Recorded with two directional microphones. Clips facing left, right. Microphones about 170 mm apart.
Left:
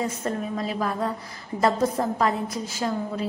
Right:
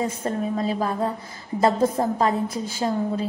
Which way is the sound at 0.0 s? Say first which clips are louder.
Right 2 dB; 30° right (ahead or behind).